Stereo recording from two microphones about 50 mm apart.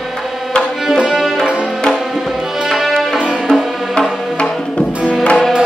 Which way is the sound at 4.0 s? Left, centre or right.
Left.